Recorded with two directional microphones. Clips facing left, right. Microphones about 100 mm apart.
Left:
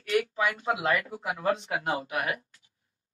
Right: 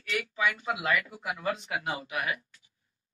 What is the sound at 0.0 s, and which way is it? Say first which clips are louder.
A man's voice: left 4 dB; 40° left (ahead or behind).